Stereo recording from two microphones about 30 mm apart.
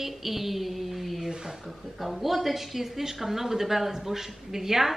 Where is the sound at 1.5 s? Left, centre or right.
Centre.